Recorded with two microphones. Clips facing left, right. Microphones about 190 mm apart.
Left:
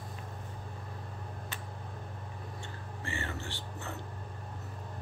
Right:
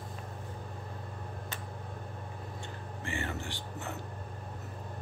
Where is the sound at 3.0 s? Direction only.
15° right (ahead or behind).